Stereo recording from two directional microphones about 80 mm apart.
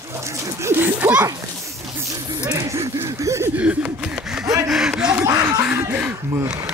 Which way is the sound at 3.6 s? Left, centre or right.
Centre.